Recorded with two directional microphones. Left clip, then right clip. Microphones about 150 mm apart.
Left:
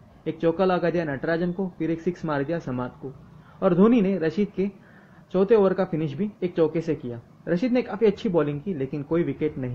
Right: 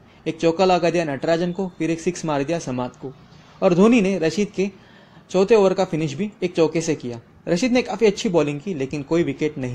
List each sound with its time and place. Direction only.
0.2 s speech: 35° right (ahead or behind)